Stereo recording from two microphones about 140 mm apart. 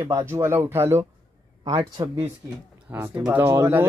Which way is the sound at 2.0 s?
30° right (ahead or behind).